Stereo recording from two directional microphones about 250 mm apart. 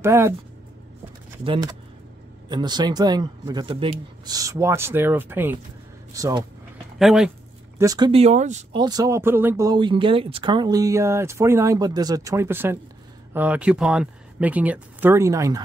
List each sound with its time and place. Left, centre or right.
0.0 s speech: centre
1.4 s speech: centre
7.0 s speech: centre
7.8 s speech: centre
8.8 s speech: centre